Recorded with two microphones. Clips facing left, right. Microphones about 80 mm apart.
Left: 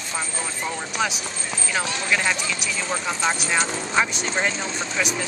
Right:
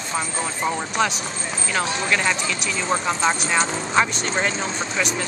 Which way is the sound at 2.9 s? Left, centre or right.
Right.